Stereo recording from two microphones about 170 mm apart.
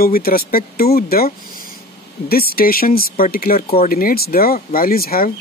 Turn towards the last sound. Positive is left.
turn(degrees=60)  # may be behind; listen again after turning